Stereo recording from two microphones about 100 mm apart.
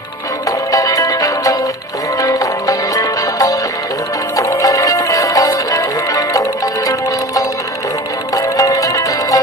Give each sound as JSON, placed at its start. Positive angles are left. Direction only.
{"t": 0.5, "sound": "music", "side_deg": 35}